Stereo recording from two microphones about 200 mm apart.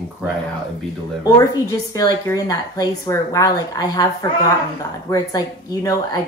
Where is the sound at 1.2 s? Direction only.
20° left (ahead or behind).